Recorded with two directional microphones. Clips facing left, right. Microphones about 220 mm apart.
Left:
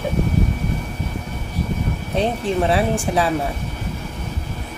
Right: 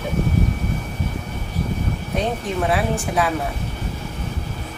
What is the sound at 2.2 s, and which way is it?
Speech, 30° left (ahead or behind).